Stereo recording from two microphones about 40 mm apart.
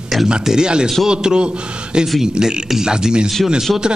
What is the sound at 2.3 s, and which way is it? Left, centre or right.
A man's voice, centre.